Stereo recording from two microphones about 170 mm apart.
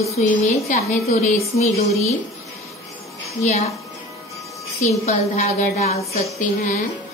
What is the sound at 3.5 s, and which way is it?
Speech, 40° left (ahead or behind).